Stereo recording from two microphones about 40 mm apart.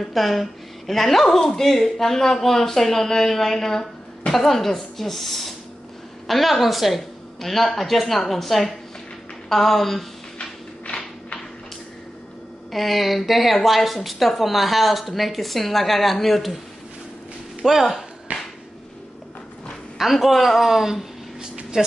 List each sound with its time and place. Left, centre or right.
0.0 s a woman's voice: centre
12.7 s a woman's voice: centre
17.6 s speech: centre
18.3 s a sound: right
20.0 s a woman's voice: centre
21.4 s a sound: right